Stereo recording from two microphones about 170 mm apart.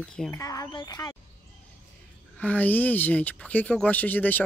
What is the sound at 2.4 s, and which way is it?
Speech, 10° left (ahead or behind).